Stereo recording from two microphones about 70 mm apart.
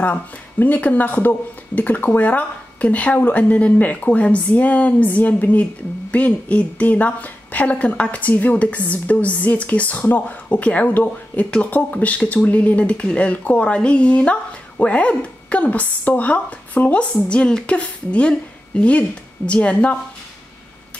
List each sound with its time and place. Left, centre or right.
0.0 s a woman's voice: left